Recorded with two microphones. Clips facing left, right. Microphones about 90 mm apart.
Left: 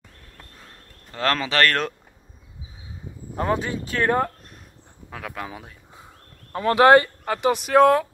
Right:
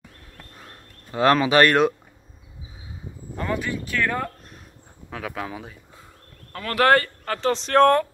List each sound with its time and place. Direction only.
0.7 s speech: 15° right (ahead or behind)
3.3 s speech: 35° left (ahead or behind)
5.1 s speech: centre (ahead or behind)
6.5 s speech: 20° left (ahead or behind)